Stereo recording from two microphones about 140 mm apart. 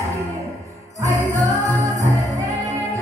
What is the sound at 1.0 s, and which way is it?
Music, 20° right (ahead or behind).